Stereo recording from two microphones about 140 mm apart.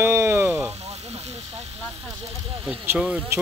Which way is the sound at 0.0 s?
20° right (ahead or behind).